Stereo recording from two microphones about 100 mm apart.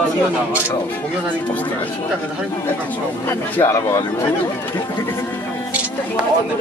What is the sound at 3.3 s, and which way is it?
Speech, 25° left (ahead or behind).